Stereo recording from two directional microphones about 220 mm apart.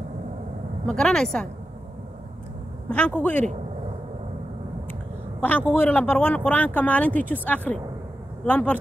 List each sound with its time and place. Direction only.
0.8 s speech: 5° left (ahead or behind)
2.9 s speech: 5° left (ahead or behind)
5.4 s a woman's voice: 10° left (ahead or behind)